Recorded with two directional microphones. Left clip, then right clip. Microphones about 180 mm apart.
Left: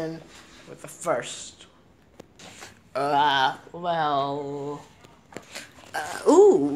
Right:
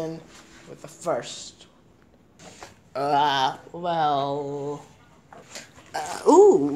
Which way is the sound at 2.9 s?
10° right (ahead or behind).